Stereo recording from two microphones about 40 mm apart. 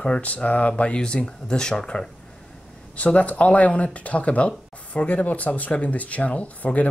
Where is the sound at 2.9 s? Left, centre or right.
Left.